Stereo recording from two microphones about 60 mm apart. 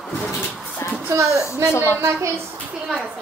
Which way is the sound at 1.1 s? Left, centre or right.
Right.